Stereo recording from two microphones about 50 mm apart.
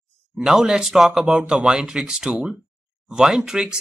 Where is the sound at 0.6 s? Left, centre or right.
Centre.